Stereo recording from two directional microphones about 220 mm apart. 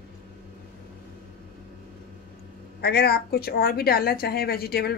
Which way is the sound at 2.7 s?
45° left (ahead or behind).